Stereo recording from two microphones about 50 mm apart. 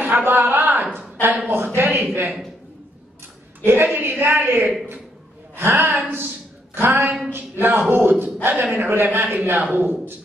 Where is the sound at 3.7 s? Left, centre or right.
Right.